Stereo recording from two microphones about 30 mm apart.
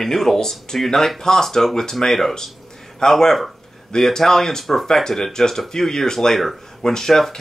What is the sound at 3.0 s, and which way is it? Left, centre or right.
Speech, left.